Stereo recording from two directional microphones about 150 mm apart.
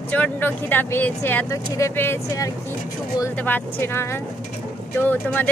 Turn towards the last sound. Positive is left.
turn(degrees=10)  # may be behind; listen again after turning